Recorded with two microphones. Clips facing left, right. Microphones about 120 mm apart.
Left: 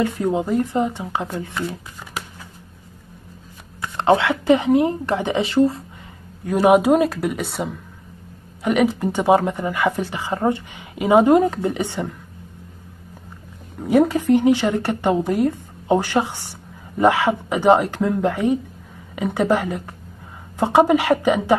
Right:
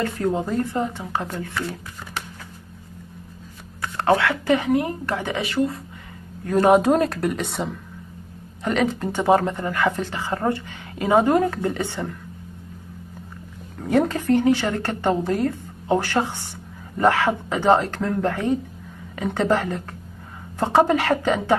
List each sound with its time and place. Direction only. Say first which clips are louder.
0.0 s speech: left 3 dB; 15° left (ahead or behind)
3.8 s speech: left 2 dB; 15° left (ahead or behind)
6.4 s speech: left 1 dB; 10° left (ahead or behind)
8.6 s speech: left 4 dB; 15° left (ahead or behind)
13.7 s speech: left 4 dB; 10° left (ahead or behind)